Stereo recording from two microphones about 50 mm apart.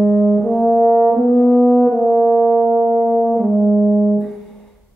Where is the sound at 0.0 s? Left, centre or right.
Centre.